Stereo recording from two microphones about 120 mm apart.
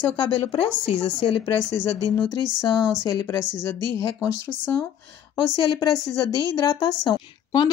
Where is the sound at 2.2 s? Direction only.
20° left (ahead or behind).